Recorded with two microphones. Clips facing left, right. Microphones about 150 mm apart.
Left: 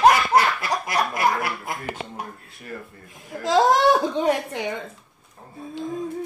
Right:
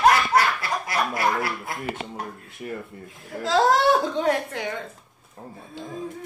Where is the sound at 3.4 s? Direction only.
15° left (ahead or behind).